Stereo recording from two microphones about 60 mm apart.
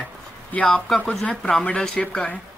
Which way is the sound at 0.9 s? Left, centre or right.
Centre.